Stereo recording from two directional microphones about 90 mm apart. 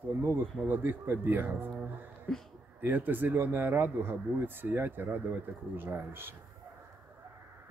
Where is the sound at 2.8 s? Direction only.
20° right (ahead or behind).